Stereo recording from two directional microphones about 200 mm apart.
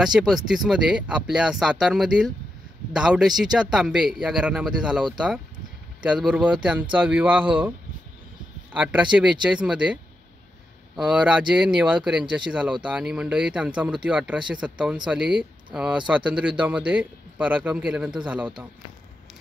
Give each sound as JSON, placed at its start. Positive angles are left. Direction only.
{"t": 0.0, "sound": "speech", "side_deg": 0}
{"t": 8.7, "sound": "speech", "side_deg": -5}
{"t": 11.0, "sound": "a man's voice", "side_deg": -5}